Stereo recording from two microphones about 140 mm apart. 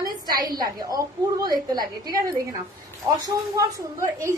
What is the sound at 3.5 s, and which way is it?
Speech, 20° right (ahead or behind).